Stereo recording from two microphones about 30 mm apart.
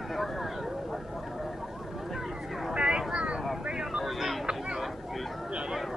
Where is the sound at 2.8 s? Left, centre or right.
Right.